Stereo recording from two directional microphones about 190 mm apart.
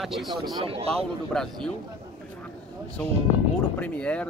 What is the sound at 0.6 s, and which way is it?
Speech, 30° right (ahead or behind).